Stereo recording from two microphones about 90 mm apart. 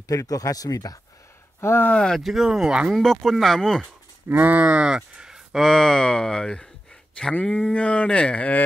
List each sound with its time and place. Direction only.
0.1 s speech: 40° left (ahead or behind)
1.6 s speech: 25° left (ahead or behind)
1.9 s speech: 10° left (ahead or behind)
2.2 s speech: 5° right (ahead or behind)
2.9 s speech: 5° left (ahead or behind)
3.8 s speech: 15° right (ahead or behind)
5.6 s speech: 5° left (ahead or behind)